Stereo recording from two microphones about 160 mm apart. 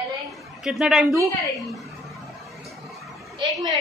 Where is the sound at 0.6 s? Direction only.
5° right (ahead or behind).